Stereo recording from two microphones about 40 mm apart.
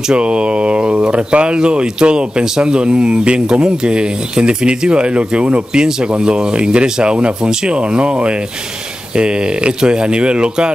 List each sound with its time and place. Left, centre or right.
0.1 s speech: right